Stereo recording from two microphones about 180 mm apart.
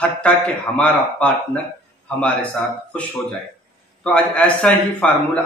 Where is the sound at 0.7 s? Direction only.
5° left (ahead or behind).